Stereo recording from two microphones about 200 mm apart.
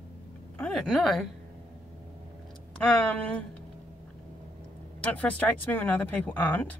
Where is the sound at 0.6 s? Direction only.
5° left (ahead or behind).